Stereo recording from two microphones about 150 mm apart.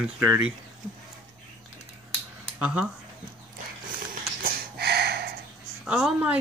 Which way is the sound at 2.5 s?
10° right (ahead or behind).